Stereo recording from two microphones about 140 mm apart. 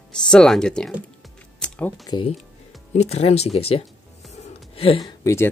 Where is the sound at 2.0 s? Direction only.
30° left (ahead or behind).